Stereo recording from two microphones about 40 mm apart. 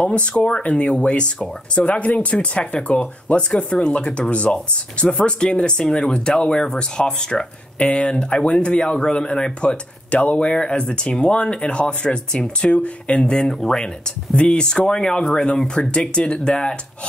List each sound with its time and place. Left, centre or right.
0.0 s speech: left
13.3 s speech: centre
14.3 s speech: left